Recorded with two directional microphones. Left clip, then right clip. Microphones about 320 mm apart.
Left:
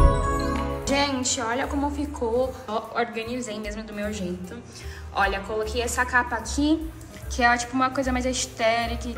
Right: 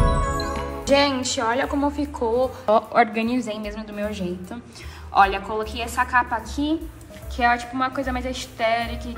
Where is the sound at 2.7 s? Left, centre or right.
Centre.